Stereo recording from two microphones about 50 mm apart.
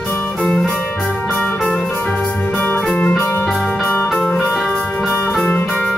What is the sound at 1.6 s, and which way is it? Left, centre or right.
Music, centre.